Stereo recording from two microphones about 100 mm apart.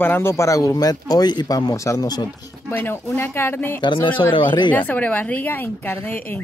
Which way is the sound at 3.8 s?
55° left (ahead or behind).